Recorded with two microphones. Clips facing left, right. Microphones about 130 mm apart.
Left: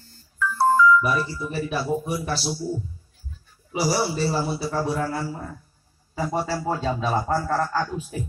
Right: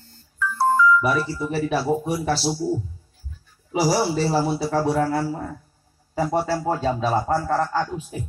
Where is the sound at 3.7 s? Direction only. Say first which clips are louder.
Right 3 dB; 90° right; by 8.2 s 25° right (ahead or behind).